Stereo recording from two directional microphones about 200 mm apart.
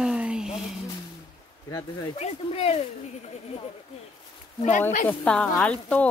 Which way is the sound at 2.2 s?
30° left (ahead or behind).